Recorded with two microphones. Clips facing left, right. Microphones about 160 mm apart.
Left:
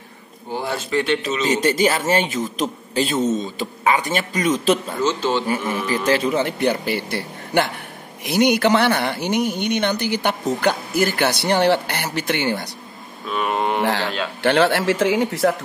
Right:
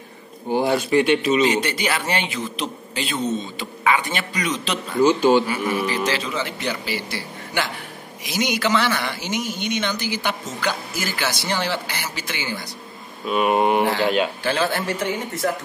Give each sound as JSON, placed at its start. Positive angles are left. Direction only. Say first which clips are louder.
{"t": 0.5, "sound": "speech", "louder": "right 5 dB", "side_deg": -15}
{"t": 1.5, "sound": "a man's voice", "louder": "left 5 dB", "side_deg": 45}
{"t": 5.0, "sound": "speech", "louder": "right 7 dB", "side_deg": -10}
{"t": 6.0, "sound": "a man's voice", "louder": "left 6 dB", "side_deg": 50}
{"t": 13.3, "sound": "speech", "louder": "right 3 dB", "side_deg": -15}
{"t": 14.4, "sound": "a man's voice", "louder": "left 6 dB", "side_deg": 70}